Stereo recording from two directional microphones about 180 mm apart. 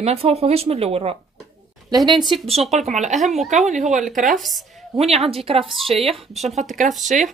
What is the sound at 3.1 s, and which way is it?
Speech, centre (ahead or behind).